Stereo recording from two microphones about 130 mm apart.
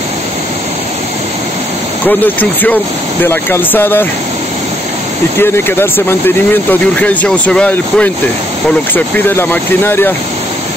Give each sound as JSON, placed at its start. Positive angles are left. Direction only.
{"t": 2.0, "sound": "speech", "side_deg": 15}
{"t": 5.4, "sound": "speech", "side_deg": 15}